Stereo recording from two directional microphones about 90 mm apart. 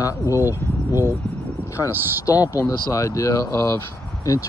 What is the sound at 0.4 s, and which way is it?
Speech, 25° right (ahead or behind).